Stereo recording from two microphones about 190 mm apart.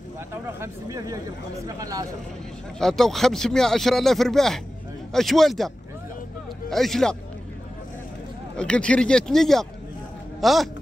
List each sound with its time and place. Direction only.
0.3 s speech: 15° right (ahead or behind)
2.8 s speech: centre (ahead or behind)
6.7 s speech: centre (ahead or behind)
8.5 s speech: 5° left (ahead or behind)